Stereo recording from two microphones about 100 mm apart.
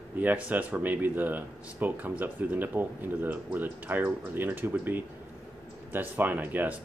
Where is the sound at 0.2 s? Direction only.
15° right (ahead or behind).